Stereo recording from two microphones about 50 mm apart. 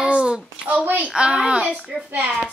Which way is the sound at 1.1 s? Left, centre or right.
Centre.